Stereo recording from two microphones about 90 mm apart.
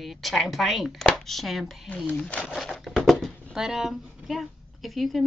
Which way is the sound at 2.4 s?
5° right (ahead or behind).